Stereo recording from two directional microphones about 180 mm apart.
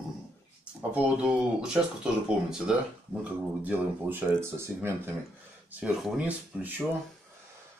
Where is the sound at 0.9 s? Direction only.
5° right (ahead or behind).